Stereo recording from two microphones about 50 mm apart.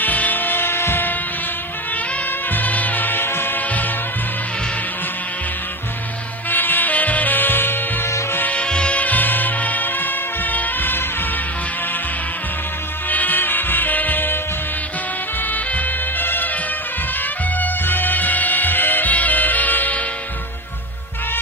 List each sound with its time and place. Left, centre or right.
0.0 s music: left
2.5 s music: left
3.6 s music: left
6.5 s music: left
8.5 s music: left
9.0 s music: left
13.1 s music: left
15.4 s music: left